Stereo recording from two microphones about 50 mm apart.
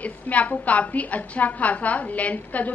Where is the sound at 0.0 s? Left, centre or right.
Left.